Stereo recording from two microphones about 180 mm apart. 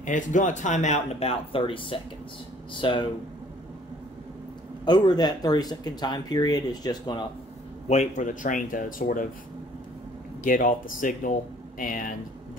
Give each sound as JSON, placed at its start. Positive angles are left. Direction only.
{"t": 0.0, "sound": "speech", "side_deg": 45}
{"t": 4.8, "sound": "speech", "side_deg": 25}
{"t": 7.9, "sound": "speech", "side_deg": 40}
{"t": 10.4, "sound": "speech", "side_deg": 50}